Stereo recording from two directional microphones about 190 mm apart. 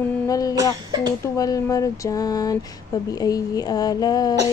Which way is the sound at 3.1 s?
20° left (ahead or behind).